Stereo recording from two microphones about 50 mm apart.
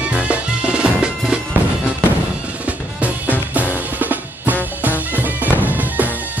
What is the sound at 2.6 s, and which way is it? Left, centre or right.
Drum, right.